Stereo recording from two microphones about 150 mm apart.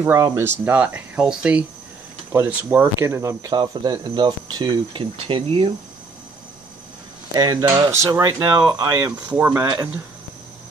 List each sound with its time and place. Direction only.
0.0 s speech: 20° right (ahead or behind)
7.3 s speech: 25° right (ahead or behind)
9.1 s speech: 10° right (ahead or behind)